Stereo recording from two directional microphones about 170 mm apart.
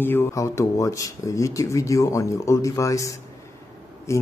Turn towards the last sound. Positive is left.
turn(degrees=15)  # may be behind; listen again after turning